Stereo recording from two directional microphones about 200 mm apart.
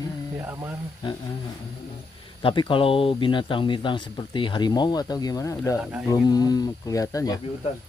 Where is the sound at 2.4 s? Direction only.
25° left (ahead or behind).